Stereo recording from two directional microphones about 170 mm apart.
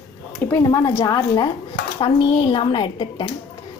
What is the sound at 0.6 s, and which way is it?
Speech, 20° left (ahead or behind).